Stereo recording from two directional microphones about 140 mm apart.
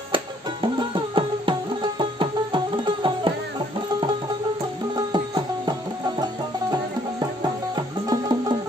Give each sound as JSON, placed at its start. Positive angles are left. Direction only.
{"t": 0.1, "sound": "music", "side_deg": -35}
{"t": 4.9, "sound": "music", "side_deg": -30}